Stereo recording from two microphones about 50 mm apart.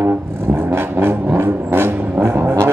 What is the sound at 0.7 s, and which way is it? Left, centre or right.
Vehicle, right.